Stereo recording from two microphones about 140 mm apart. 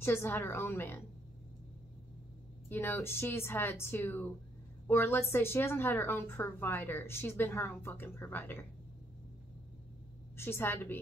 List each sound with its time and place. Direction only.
0.0 s a woman's voice: 15° left (ahead or behind)
2.7 s a woman's voice: 15° left (ahead or behind)
10.3 s a woman's voice: 15° left (ahead or behind)